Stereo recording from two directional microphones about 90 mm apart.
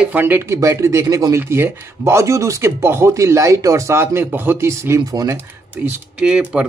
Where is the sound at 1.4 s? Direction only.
25° right (ahead or behind).